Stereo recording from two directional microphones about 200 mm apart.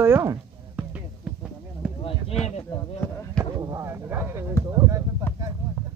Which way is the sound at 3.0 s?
5° left (ahead or behind).